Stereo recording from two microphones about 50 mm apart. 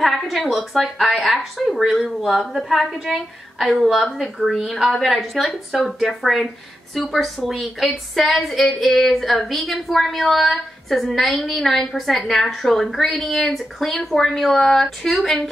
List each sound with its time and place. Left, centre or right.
0.0 s a woman's voice: centre
5.4 s a woman's voice: centre